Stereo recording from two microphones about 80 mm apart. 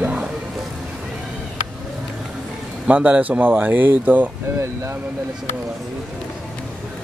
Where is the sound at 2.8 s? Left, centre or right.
Centre.